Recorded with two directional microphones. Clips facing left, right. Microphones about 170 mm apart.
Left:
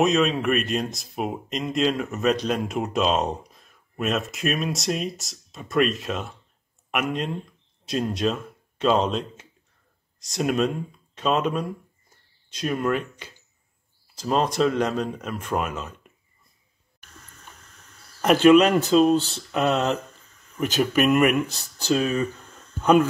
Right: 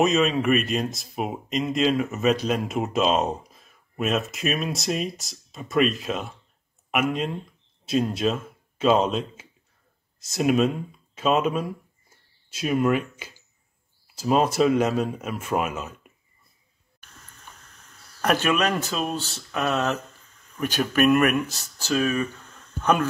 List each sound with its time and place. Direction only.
0.0 s speech: centre (ahead or behind)
18.4 s speech: 25° left (ahead or behind)
20.5 s speech: 15° left (ahead or behind)
21.8 s speech: 25° left (ahead or behind)